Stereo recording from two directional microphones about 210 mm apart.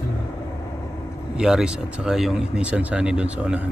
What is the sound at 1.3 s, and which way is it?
Speech, 5° right (ahead or behind).